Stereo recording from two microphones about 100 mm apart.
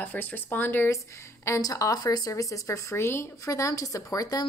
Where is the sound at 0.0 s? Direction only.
20° left (ahead or behind).